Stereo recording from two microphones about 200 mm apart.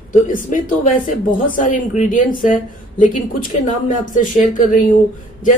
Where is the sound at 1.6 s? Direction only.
40° left (ahead or behind).